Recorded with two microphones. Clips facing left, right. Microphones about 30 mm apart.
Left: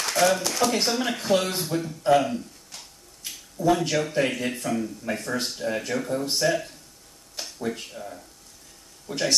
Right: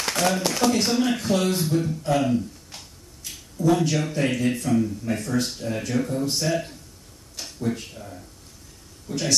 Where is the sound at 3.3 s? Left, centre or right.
Centre.